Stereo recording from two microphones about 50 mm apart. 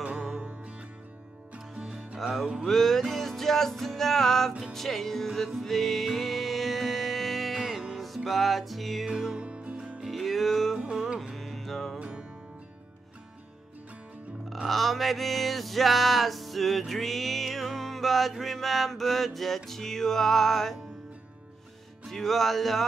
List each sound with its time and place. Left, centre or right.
0.4 s music: right
2.1 s music: centre
9.4 s music: right
10.0 s music: centre
12.0 s music: right
14.7 s music: centre
22.0 s music: centre